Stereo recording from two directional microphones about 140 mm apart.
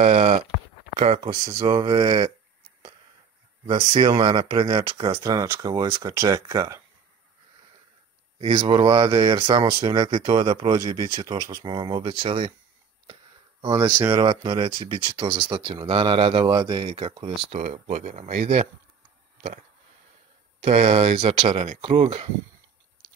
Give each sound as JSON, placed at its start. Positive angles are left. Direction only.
{"t": 0.0, "sound": "speech", "side_deg": -55}
{"t": 1.2, "sound": "speech", "side_deg": -30}
{"t": 3.6, "sound": "speech", "side_deg": -35}
{"t": 8.4, "sound": "speech", "side_deg": -35}
{"t": 10.0, "sound": "speech", "side_deg": -40}
{"t": 13.7, "sound": "speech", "side_deg": -30}
{"t": 20.6, "sound": "speech", "side_deg": -50}